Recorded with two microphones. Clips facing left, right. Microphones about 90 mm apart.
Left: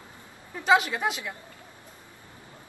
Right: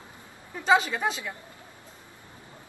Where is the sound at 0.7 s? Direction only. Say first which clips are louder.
Even; 10° left (ahead or behind).